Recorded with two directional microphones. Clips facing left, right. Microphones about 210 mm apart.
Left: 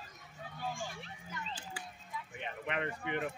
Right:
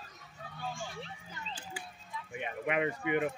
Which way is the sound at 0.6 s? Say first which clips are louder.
Even; 10° left (ahead or behind).